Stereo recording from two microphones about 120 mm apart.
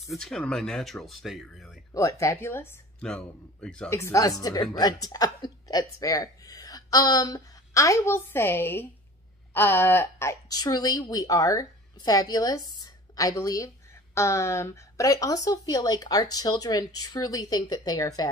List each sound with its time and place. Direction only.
0.0 s speech: centre (ahead or behind)
2.0 s a woman's voice: 25° left (ahead or behind)
3.0 s a man's voice: 10° left (ahead or behind)
3.9 s a woman's voice: 25° left (ahead or behind)
10.5 s a woman's voice: 35° left (ahead or behind)